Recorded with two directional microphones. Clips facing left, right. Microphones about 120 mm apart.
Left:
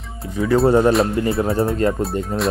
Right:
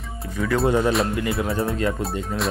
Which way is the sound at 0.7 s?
40° left (ahead or behind).